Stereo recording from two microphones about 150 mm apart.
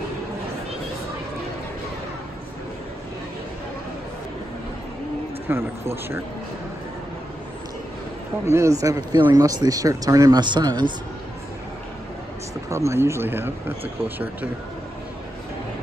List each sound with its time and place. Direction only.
5.5 s speech: 15° right (ahead or behind)
8.5 s speech: 20° right (ahead or behind)
12.6 s speech: 20° right (ahead or behind)